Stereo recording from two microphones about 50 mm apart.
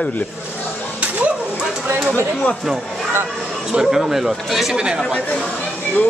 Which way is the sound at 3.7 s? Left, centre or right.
Centre.